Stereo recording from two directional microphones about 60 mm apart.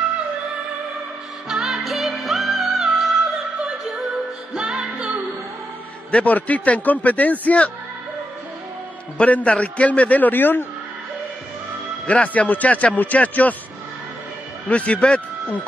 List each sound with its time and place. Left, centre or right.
1.5 s music: centre
4.6 s music: centre
6.1 s a man's voice: left
9.2 s a man's voice: left
12.1 s a man's voice: left
14.7 s a man's voice: left